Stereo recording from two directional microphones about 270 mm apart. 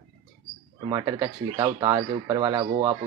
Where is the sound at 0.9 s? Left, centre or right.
Centre.